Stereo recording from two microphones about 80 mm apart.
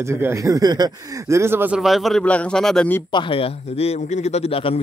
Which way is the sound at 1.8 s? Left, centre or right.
Centre.